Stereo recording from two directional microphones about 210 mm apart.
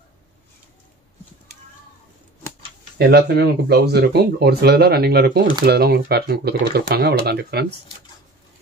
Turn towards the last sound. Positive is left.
turn(degrees=-50)  # may be behind; listen again after turning